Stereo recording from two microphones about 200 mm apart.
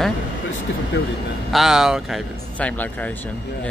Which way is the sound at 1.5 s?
Centre (ahead or behind).